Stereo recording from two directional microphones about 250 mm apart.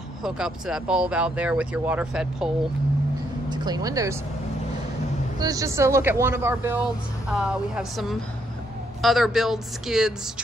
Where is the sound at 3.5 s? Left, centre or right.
Centre.